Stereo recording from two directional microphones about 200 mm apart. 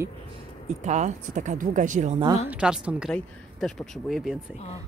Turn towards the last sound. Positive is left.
turn(degrees=0)  # may be behind; listen again after turning